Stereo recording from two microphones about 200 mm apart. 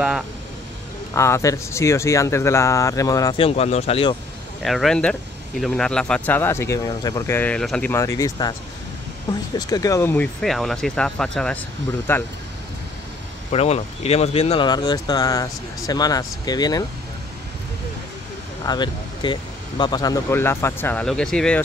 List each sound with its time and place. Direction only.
1.1 s speech: 15° left (ahead or behind)
3.4 s speech: 30° left (ahead or behind)
4.6 s speech: centre (ahead or behind); by 8.5 s 20° left (ahead or behind)
9.6 s speech: 20° left (ahead or behind)
13.5 s speech: 30° left (ahead or behind)
18.7 s speech: 20° left (ahead or behind); by 21.6 s 5° left (ahead or behind)